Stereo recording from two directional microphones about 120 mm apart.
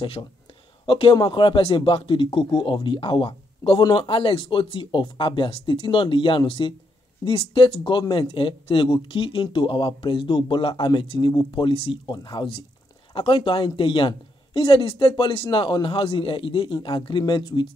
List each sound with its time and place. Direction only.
0.0 s speech: 45° left (ahead or behind)